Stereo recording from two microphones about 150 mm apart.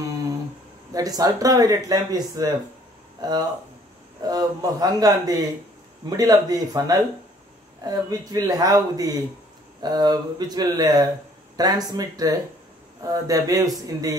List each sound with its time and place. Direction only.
0.9 s speech: 25° right (ahead or behind)